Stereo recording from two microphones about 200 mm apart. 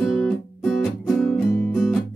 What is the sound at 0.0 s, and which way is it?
Music, centre (ahead or behind).